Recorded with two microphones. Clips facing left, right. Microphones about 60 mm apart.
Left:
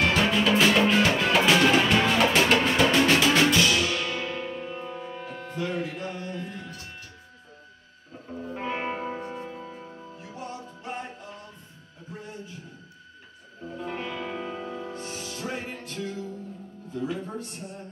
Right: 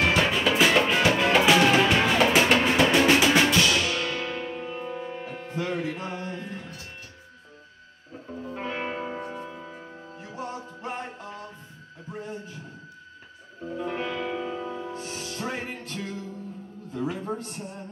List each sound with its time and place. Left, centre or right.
0.0 s music: centre
4.7 s music: centre; by 6.6 s right
8.6 s music: centre
13.7 s music: centre
15.3 s music: right